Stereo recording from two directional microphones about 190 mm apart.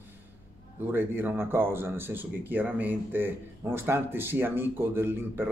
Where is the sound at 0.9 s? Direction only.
10° right (ahead or behind).